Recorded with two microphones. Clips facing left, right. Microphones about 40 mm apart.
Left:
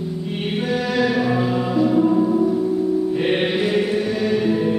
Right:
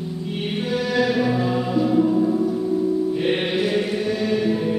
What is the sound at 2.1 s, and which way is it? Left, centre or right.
Music, left.